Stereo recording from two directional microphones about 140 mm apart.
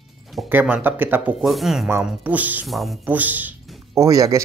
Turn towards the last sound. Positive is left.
turn(degrees=-25)  # may be behind; listen again after turning